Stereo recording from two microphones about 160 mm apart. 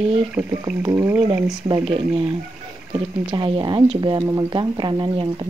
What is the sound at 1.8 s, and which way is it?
Speech, 35° right (ahead or behind).